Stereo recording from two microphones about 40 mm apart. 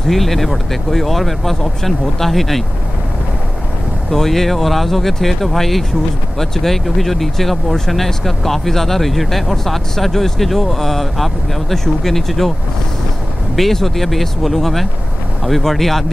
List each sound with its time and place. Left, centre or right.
0.0 s speech: centre
4.1 s speech: centre
13.6 s speech: centre